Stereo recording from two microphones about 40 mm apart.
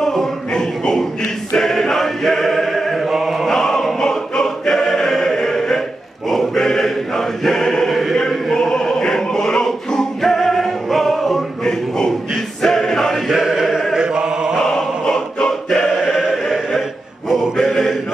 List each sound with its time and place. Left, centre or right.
0.0 s music: centre
1.5 s choir: centre
3.4 s choir: centre
7.9 s a sound: centre
8.5 s music: centre
12.6 s choir: centre
13.3 s choir: centre
13.9 s chant: centre
14.6 s choir: centre
17.3 s choir: centre